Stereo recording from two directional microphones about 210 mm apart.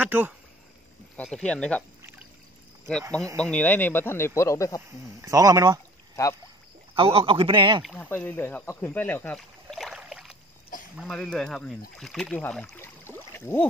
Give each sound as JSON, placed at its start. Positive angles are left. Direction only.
{"t": 0.0, "sound": "speech", "side_deg": -10}
{"t": 1.1, "sound": "speech", "side_deg": 5}
{"t": 2.0, "sound": "pour", "side_deg": -10}
{"t": 3.3, "sound": "speech", "side_deg": 5}
{"t": 5.2, "sound": "speech", "side_deg": -15}
{"t": 7.0, "sound": "a man's voice", "side_deg": -25}
{"t": 7.8, "sound": "speech", "side_deg": 10}